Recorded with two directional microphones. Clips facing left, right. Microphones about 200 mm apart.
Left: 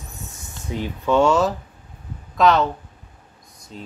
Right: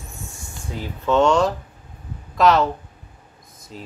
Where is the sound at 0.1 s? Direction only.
20° left (ahead or behind).